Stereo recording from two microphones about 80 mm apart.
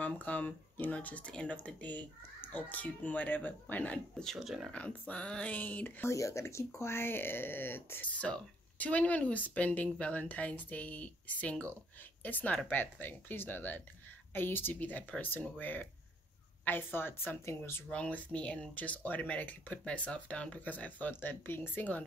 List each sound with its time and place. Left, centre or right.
0.0 s speech: centre
4.1 s speech: centre
4.7 s speech: centre
6.0 s speech: left
17.9 s speech: centre